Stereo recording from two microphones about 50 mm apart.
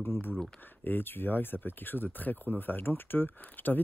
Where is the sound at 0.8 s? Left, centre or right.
Left.